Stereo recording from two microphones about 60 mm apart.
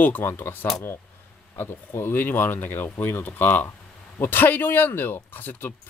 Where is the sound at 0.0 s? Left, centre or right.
Left.